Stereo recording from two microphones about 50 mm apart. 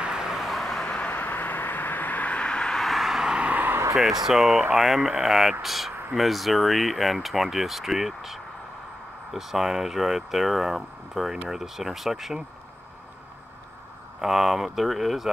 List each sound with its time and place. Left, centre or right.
0.0 s vehicle: centre
0.8 s vehicle: centre
1.1 s vehicle: left; by 2.8 s centre
2.8 s vehicle: centre
3.3 s a sound: right
3.9 s speech: centre
14.2 s speech: centre